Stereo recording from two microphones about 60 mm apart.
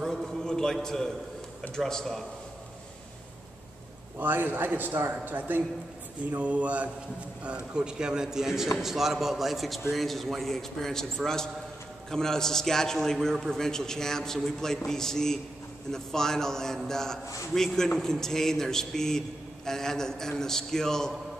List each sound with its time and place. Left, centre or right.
0.0 s a sound: centre
1.8 s a man's voice: centre
4.2 s a man's voice: right; by 21.1 s centre